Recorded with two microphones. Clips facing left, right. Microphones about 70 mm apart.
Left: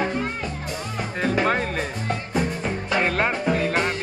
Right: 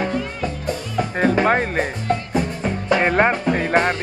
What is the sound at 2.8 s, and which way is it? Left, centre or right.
Music, right.